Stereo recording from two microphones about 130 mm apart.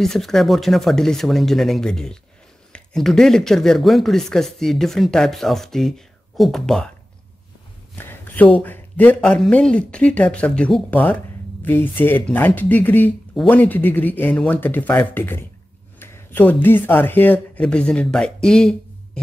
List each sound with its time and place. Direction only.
0.0 s speech: 5° left (ahead or behind)
8.0 s speech: 15° left (ahead or behind)